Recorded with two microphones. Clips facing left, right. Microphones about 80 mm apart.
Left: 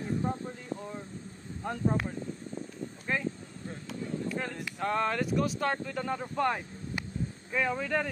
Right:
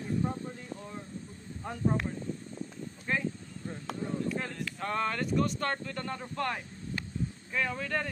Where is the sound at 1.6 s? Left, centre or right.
Centre.